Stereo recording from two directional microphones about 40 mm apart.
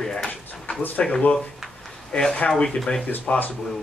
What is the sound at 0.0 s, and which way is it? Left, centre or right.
Drawer open or close, centre.